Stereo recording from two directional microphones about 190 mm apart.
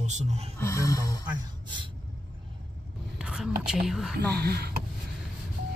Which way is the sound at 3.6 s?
5° right (ahead or behind).